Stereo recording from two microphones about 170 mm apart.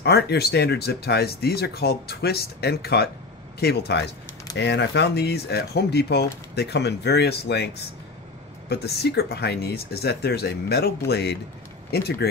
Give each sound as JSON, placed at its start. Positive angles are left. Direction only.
{"t": 0.0, "sound": "speech", "side_deg": 75}
{"t": 4.6, "sound": "speech", "side_deg": 90}
{"t": 11.1, "sound": "speech", "side_deg": 80}
{"t": 11.9, "sound": "speech", "side_deg": 70}